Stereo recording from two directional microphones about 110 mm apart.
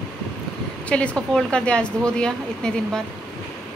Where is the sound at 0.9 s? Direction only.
10° left (ahead or behind).